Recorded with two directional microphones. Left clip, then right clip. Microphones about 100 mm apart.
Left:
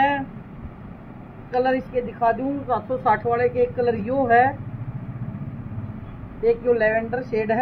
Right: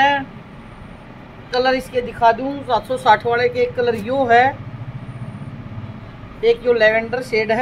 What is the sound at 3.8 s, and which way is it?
Speech, 50° right (ahead or behind).